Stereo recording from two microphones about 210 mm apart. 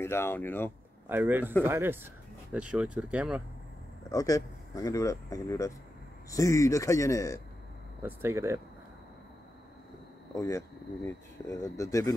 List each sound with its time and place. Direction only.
0.0 s speech: 10° left (ahead or behind)
1.0 s speech: 10° right (ahead or behind)
4.1 s speech: 15° left (ahead or behind)
8.0 s speech: 10° right (ahead or behind)
10.3 s speech: 15° left (ahead or behind)